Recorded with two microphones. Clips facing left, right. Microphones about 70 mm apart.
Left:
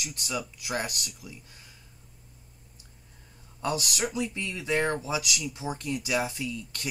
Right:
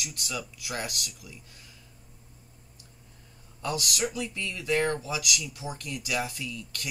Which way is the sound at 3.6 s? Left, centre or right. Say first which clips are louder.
Left 1 dB; left.